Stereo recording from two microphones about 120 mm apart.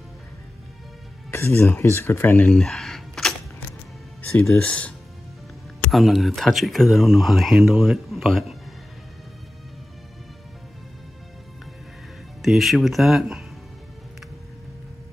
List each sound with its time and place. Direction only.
1.3 s speech: 20° left (ahead or behind)
2.5 s a sound: 5° left (ahead or behind)
4.5 s speech: 10° left (ahead or behind)
5.9 s speech: centre (ahead or behind)
12.4 s speech: centre (ahead or behind)